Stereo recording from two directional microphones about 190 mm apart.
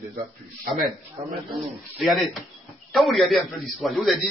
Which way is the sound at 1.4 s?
Centre (ahead or behind).